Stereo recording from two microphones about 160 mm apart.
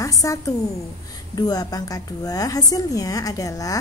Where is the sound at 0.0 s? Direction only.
20° left (ahead or behind).